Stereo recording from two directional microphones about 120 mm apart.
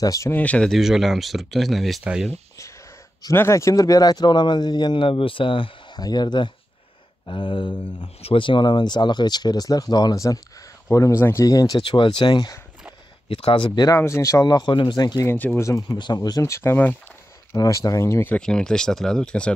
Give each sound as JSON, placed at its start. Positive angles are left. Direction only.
{"t": 0.0, "sound": "speech", "side_deg": 30}
{"t": 0.3, "sound": "speech", "side_deg": 10}
{"t": 0.7, "sound": "speech", "side_deg": 0}
{"t": 3.3, "sound": "speech", "side_deg": 25}
{"t": 11.8, "sound": "speech", "side_deg": 45}
{"t": 13.3, "sound": "speech", "side_deg": 50}
{"t": 13.9, "sound": "speech", "side_deg": 25}
{"t": 15.2, "sound": "speech", "side_deg": 15}
{"t": 16.0, "sound": "speech", "side_deg": 35}